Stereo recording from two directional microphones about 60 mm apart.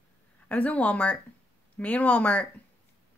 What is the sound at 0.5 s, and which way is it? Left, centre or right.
A woman's voice, left.